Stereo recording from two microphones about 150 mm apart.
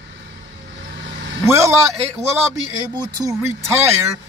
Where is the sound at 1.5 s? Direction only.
20° right (ahead or behind).